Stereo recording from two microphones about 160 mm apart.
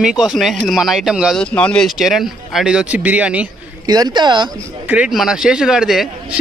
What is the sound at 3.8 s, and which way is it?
Speech, 25° right (ahead or behind).